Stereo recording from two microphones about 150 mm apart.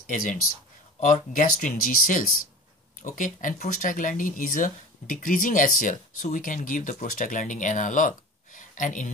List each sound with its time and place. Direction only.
0.0 s speech: 65° left (ahead or behind)